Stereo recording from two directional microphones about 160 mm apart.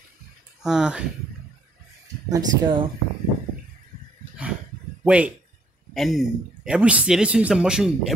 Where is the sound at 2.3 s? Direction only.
30° right (ahead or behind).